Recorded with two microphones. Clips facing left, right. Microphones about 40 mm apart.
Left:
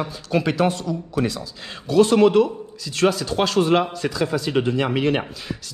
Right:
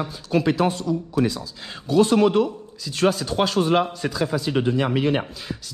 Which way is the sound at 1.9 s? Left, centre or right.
Left.